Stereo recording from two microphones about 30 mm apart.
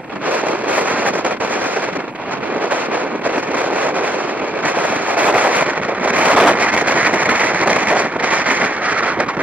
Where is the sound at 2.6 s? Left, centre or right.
Right.